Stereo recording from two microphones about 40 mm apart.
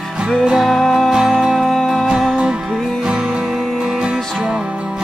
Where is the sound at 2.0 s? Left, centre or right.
Centre.